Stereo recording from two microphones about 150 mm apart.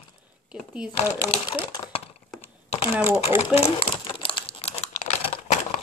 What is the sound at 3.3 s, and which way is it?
Crumpling, 40° left (ahead or behind).